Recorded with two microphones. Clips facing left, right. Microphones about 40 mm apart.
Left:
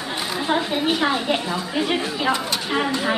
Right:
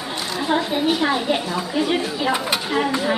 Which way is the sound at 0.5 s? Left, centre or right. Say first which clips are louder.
Right 2 dB; centre.